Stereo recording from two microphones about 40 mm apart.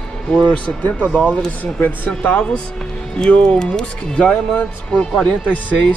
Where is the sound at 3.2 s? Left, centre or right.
Left.